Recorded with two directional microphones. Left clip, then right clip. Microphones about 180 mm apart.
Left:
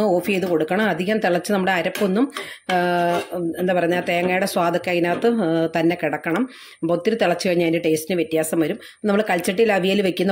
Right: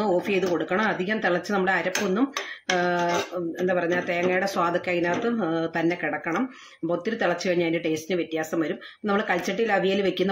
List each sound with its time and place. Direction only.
0.0 s speech: 40° left (ahead or behind)